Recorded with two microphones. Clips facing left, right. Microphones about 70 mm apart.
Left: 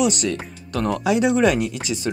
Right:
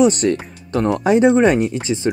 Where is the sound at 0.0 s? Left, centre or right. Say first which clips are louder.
Right 6 dB; right.